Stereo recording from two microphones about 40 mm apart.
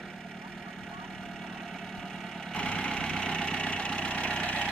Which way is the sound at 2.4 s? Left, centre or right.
Left.